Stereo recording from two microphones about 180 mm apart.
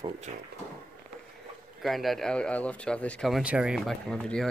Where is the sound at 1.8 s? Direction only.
Centre (ahead or behind).